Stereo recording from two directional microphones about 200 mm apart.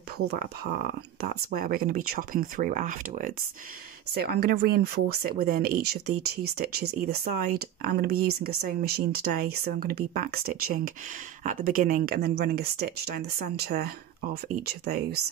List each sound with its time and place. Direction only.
0.3 s speech: 50° right (ahead or behind)
4.1 s speech: 50° right (ahead or behind)